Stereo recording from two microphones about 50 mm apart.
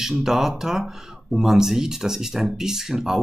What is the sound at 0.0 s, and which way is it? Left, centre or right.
Speech, centre.